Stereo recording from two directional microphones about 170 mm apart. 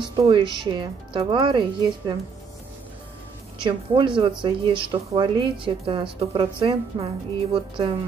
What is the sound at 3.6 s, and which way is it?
A woman's voice, 30° right (ahead or behind).